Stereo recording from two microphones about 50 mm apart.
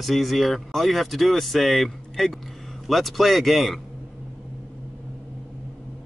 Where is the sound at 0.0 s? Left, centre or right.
Centre.